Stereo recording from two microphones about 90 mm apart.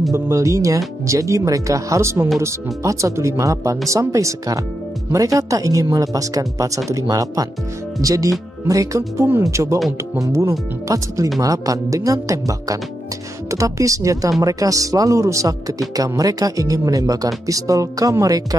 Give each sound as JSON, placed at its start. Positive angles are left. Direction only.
{"t": 0.1, "sound": "speech", "side_deg": -35}